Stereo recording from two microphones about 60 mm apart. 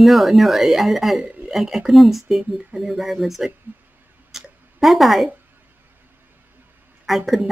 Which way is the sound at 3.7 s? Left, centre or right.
Right.